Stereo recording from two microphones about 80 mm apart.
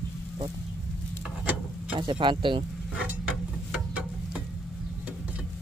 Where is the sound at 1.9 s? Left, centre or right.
Right.